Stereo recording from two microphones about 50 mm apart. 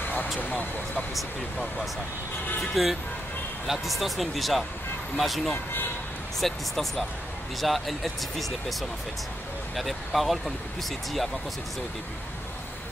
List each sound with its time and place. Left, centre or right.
2.6 s speech: centre
5.5 s speech: left
6.4 s speech: centre
9.8 s speech: centre